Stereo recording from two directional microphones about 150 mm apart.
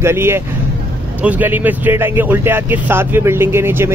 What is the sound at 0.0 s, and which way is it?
Speech, 15° right (ahead or behind).